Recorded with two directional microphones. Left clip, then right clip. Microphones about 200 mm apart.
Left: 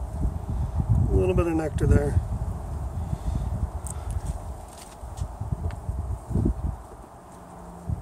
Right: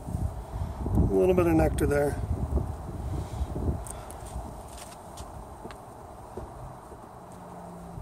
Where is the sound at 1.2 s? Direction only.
30° right (ahead or behind).